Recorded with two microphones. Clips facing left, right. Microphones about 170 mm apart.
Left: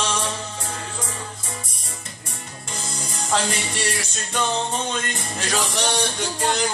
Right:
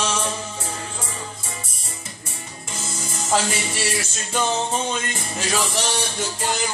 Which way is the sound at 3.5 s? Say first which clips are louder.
Right 1 dB; 5° right (ahead or behind).